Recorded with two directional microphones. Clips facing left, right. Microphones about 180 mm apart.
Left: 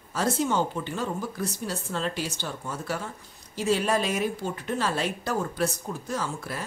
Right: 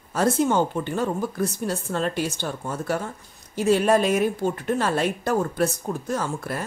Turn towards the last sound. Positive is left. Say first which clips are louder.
# right 4 dB
turn(degrees=-50)  # may be behind; listen again after turning